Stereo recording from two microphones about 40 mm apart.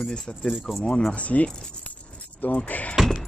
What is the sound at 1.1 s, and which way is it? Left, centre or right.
Speech, left.